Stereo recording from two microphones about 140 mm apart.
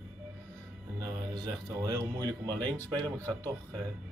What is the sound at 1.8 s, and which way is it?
Speech, 25° right (ahead or behind).